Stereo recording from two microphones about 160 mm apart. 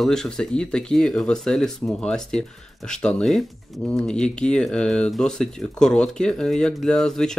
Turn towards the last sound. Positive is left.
turn(degrees=5)  # may be behind; listen again after turning